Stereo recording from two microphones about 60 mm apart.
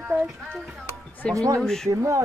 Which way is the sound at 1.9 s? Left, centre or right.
Right.